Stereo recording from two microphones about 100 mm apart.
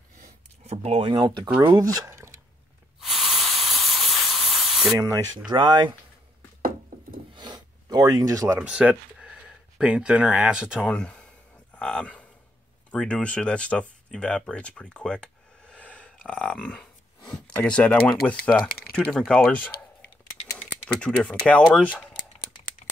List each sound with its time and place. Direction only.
0.7 s speech: 90° right
1.0 s speech: 50° right (ahead or behind)
1.6 s speech: 25° right (ahead or behind)
2.0 s a sound: 25° right (ahead or behind)
3.0 s hiss: centre (ahead or behind)
5.5 s speech: 45° right (ahead or behind)
7.3 s gasp: 45° right (ahead or behind)
8.5 s speech: 10° right (ahead or behind)
10.9 s speech: 10° left (ahead or behind)
16.3 s a sound: 10° left (ahead or behind)
17.6 s speech: 10° left (ahead or behind)
20.8 s speech: 10° left (ahead or behind)